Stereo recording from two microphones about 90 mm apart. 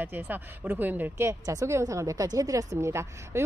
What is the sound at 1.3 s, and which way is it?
A woman's voice, 35° right (ahead or behind).